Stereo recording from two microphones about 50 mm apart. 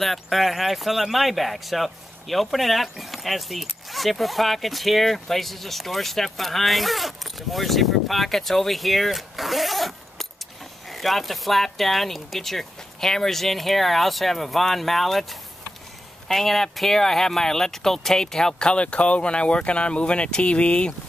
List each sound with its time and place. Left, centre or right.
0.0 s speech: centre
16.3 s speech: centre; by 20.9 s left